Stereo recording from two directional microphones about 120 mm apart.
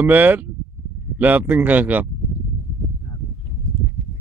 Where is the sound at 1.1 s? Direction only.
15° right (ahead or behind).